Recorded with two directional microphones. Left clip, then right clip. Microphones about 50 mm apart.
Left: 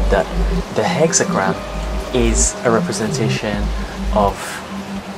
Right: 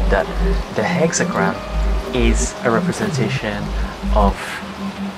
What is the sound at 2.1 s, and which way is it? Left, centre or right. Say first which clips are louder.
Speech: left 3 dB; left.